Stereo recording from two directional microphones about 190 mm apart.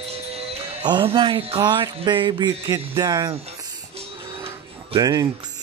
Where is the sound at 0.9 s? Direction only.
25° right (ahead or behind).